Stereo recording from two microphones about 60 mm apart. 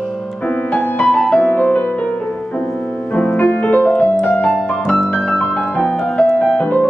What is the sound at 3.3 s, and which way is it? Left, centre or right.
Music, left.